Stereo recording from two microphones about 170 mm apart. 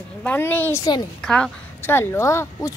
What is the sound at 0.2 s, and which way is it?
A woman's voice, 10° left (ahead or behind).